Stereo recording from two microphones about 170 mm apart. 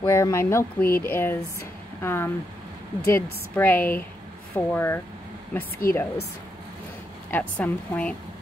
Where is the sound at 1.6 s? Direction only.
15° left (ahead or behind).